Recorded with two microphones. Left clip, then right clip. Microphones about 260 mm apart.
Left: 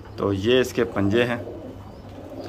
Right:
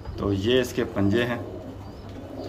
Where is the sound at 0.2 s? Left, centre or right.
Centre.